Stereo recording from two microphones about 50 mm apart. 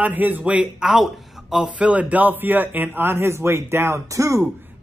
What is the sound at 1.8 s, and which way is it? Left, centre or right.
A man's voice, right.